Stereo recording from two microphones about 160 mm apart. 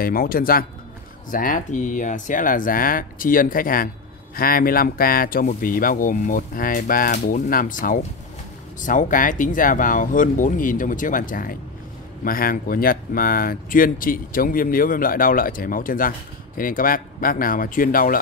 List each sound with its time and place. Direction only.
0.0 s speech: 65° left (ahead or behind)